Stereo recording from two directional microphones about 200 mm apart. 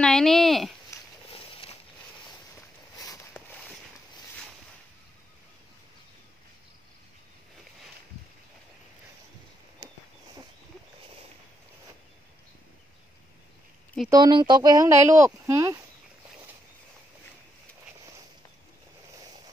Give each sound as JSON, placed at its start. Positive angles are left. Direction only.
{"t": 0.0, "sound": "speech", "side_deg": 0}
{"t": 0.8, "sound": "a sound", "side_deg": 25}
{"t": 14.1, "sound": "speech", "side_deg": -20}